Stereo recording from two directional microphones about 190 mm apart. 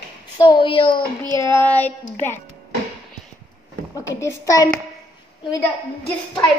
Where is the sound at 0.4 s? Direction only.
25° left (ahead or behind).